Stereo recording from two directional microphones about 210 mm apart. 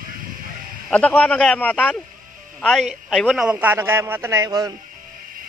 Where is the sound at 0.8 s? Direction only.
5° left (ahead or behind); by 4.7 s 15° right (ahead or behind).